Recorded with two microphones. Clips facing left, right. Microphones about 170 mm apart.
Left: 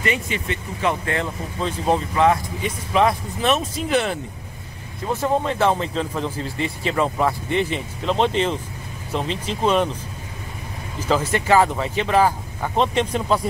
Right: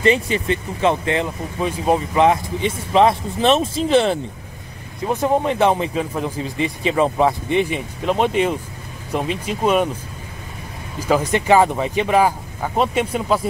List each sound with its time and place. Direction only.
0.0 s speech: 30° right (ahead or behind)
5.0 s speech: 15° right (ahead or behind)
11.0 s speech: 10° right (ahead or behind)